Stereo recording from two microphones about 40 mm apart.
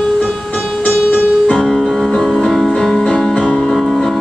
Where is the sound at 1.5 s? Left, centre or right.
Centre.